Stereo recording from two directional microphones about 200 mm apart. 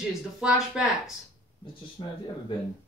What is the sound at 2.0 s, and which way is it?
Speech, 20° left (ahead or behind).